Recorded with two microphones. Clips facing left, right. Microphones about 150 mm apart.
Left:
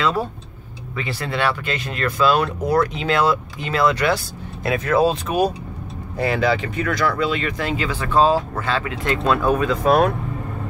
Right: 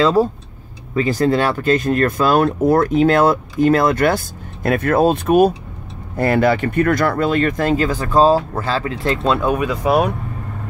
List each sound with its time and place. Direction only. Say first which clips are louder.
0.0 s speech: right 7 dB; 35° right (ahead or behind); by 10.1 s 10° right (ahead or behind)